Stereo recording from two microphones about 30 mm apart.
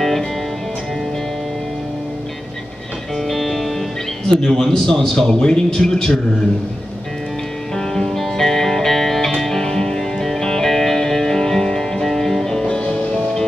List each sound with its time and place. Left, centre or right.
3.3 s music: centre
4.3 s a man's voice: centre
5.3 s a man's voice: left
7.7 s music: centre
10.7 s music: centre